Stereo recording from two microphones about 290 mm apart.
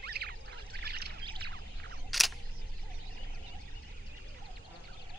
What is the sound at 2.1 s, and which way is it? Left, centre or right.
Single-lens reflex camera, centre.